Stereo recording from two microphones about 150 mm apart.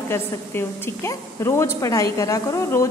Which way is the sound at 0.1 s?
15° left (ahead or behind).